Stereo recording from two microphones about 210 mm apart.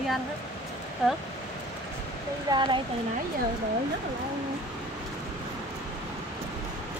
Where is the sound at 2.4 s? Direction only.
20° right (ahead or behind).